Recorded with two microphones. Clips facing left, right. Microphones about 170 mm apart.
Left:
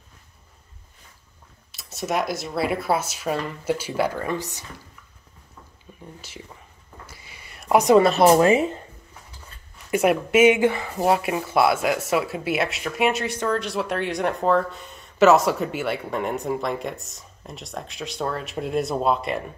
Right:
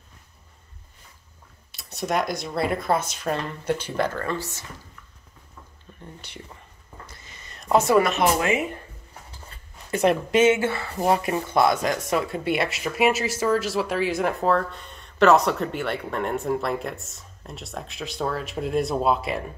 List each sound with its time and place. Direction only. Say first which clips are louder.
1.7 s speech: even; centre (ahead or behind)
5.9 s a sound: left 3 dB; 15° left (ahead or behind)
6.2 s speech: left 1 dB; 5° left (ahead or behind)
7.1 s a sound: even; 10° left (ahead or behind)
8.0 s speech: left 6 dB; 35° left (ahead or behind)
9.8 s speech: left 1 dB; 10° left (ahead or behind)
11.0 s speech: even; 5° left (ahead or behind)